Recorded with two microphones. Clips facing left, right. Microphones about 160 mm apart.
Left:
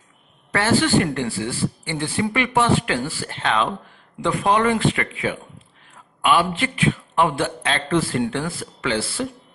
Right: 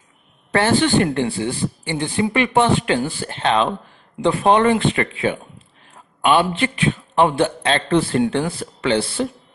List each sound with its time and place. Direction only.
0.6 s speech: 25° right (ahead or behind)